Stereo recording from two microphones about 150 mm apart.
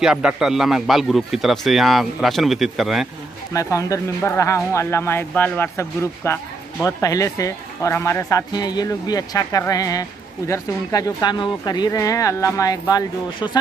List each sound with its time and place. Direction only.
0.0 s speech: 5° right (ahead or behind)
3.5 s speech: 20° left (ahead or behind)